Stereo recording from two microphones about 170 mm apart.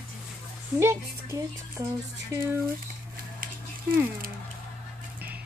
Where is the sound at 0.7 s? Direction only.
15° right (ahead or behind).